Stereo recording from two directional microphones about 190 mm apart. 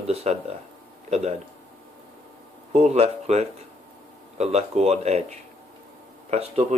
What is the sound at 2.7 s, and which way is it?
Speech, 35° right (ahead or behind).